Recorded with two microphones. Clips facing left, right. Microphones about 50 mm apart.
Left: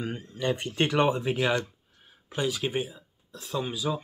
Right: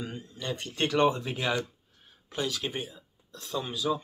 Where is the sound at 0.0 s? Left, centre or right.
Left.